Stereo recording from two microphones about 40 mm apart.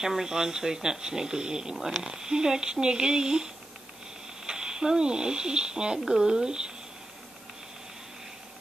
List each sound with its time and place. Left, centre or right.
0.0 s speech: centre